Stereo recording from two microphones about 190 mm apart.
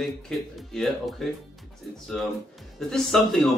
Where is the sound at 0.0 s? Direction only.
Centre (ahead or behind).